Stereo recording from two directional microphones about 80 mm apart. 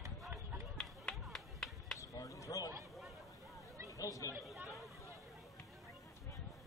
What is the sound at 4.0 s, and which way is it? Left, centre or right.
Chatter, left.